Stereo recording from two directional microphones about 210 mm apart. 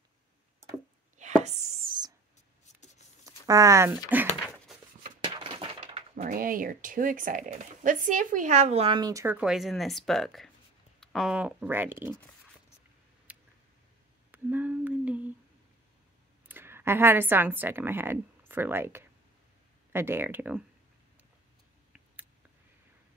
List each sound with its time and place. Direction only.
1.1 s chopping: 35° right (ahead or behind)
2.7 s a sound: 35° left (ahead or behind)
3.3 s speech: 15° right (ahead or behind)
5.2 s speech: 25° right (ahead or behind)
13.3 s a sound: 5° right (ahead or behind)
14.3 s humming: 10° right (ahead or behind)
16.4 s a woman's voice: 10° right (ahead or behind)